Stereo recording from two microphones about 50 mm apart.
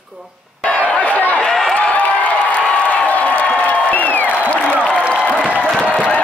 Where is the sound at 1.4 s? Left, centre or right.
Centre.